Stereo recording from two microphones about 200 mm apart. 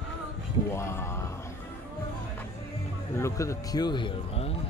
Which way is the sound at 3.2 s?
15° left (ahead or behind).